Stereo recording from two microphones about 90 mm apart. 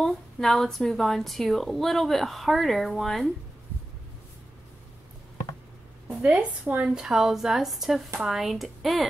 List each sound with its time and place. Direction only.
0.0 s a woman's voice: centre (ahead or behind)
6.2 s a woman's voice: 20° right (ahead or behind)
7.0 s a woman's voice: 5° right (ahead or behind)